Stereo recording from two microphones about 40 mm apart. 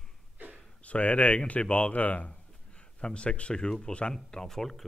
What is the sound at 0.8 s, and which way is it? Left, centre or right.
Speech, left.